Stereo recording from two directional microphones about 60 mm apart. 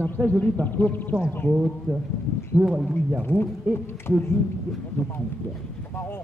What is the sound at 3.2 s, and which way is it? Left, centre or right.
Speech, left.